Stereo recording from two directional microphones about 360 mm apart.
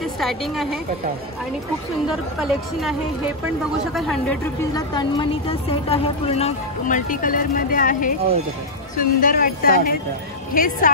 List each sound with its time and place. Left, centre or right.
0.0 s a woman's voice: centre
2.0 s a woman's voice: centre; by 10.9 s left